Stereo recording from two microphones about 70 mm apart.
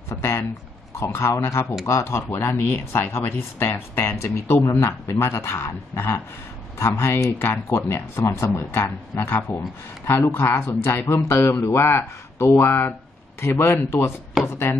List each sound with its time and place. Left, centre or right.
0.1 s speech: left